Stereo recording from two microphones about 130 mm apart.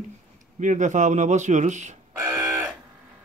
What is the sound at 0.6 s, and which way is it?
A man's voice, 70° right (ahead or behind).